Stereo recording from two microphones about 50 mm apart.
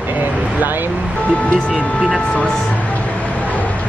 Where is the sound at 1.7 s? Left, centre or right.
Centre.